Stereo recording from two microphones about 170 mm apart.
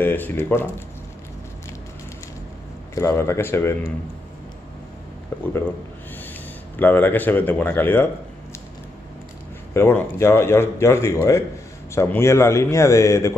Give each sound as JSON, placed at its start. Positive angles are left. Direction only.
{"t": 0.0, "sound": "a man's voice", "side_deg": 10}
{"t": 2.9, "sound": "a man's voice", "side_deg": 15}
{"t": 5.3, "sound": "speech", "side_deg": 15}
{"t": 6.8, "sound": "a man's voice", "side_deg": 10}
{"t": 9.8, "sound": "a man's voice", "side_deg": 15}